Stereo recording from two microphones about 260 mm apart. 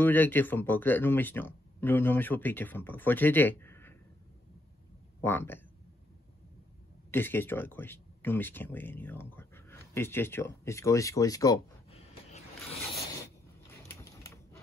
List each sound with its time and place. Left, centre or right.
0.0 s speech: centre
5.2 s speech: centre
7.1 s speech: centre; by 12.4 s left
13.8 s a sound: centre